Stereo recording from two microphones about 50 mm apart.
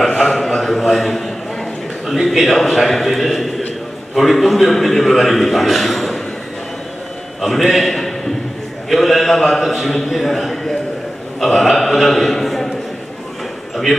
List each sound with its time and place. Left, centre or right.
0.3 s a sound: centre
2.0 s a man's voice: centre
7.4 s a man's voice: centre